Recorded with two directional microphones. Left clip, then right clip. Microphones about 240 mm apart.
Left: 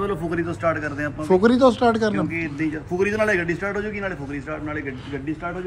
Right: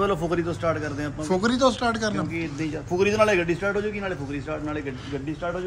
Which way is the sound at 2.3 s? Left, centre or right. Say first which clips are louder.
Left 4 dB; centre.